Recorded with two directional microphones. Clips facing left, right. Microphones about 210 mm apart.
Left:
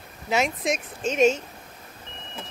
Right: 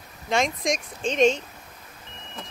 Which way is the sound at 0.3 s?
5° left (ahead or behind).